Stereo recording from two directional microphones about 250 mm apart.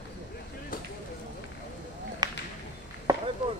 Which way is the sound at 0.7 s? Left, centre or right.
Left.